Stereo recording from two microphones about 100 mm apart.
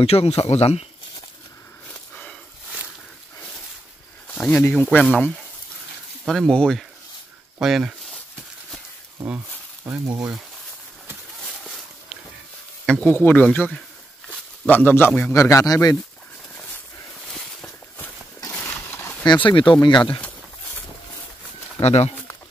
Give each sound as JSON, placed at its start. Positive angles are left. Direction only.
{"t": 0.0, "sound": "speech", "side_deg": 90}
{"t": 4.3, "sound": "a man's voice", "side_deg": 15}
{"t": 9.8, "sound": "speech", "side_deg": -25}
{"t": 11.4, "sound": "a sound", "side_deg": 0}
{"t": 12.8, "sound": "speech", "side_deg": 5}
{"t": 13.1, "sound": "speech", "side_deg": 20}
{"t": 14.7, "sound": "a man's voice", "side_deg": 20}
{"t": 15.3, "sound": "speech", "side_deg": 30}
{"t": 18.5, "sound": "a sound", "side_deg": 15}
{"t": 19.4, "sound": "speech", "side_deg": 55}
{"t": 21.8, "sound": "speech", "side_deg": 90}